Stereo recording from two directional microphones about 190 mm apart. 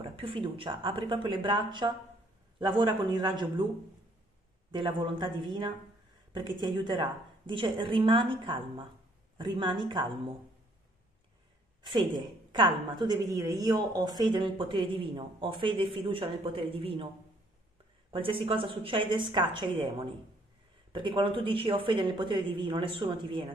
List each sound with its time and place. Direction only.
0.0 s a woman's voice: 30° right (ahead or behind)
4.6 s a woman's voice: 25° right (ahead or behind)
11.8 s a woman's voice: 25° right (ahead or behind)
18.1 s a woman's voice: 30° right (ahead or behind)